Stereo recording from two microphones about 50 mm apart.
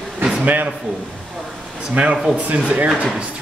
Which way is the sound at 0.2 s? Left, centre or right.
Centre.